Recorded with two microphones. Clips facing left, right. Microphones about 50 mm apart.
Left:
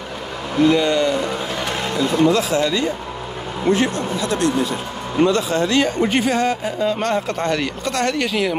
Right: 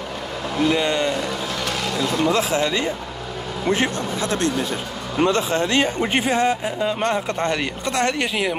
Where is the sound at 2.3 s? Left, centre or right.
Right.